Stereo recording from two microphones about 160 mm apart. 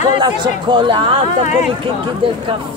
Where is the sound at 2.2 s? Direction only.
35° right (ahead or behind).